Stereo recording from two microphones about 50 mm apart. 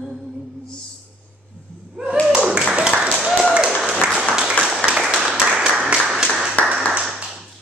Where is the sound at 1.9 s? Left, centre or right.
Centre.